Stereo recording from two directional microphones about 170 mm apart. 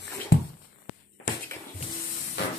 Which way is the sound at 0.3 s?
90° left.